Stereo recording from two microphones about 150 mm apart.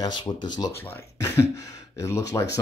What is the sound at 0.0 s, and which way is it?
Speech, 25° left (ahead or behind).